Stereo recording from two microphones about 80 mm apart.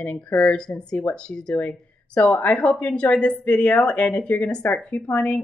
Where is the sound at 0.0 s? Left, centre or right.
Centre.